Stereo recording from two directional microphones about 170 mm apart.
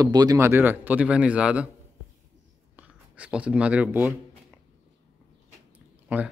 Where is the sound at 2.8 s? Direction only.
10° right (ahead or behind).